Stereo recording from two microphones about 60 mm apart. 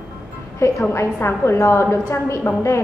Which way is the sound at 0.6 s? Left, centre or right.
Left.